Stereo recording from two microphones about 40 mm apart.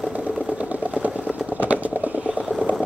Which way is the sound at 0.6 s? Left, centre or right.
Right.